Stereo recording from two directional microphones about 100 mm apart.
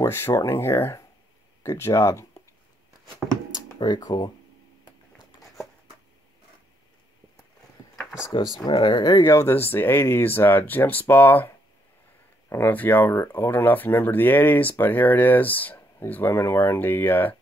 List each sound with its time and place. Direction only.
0.0 s speech: 25° left (ahead or behind)
3.8 s speech: 45° left (ahead or behind)
8.3 s speech: 40° left (ahead or behind); by 17.4 s 20° left (ahead or behind)